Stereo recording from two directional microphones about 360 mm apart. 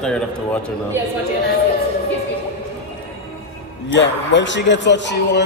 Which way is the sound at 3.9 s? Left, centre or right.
Left.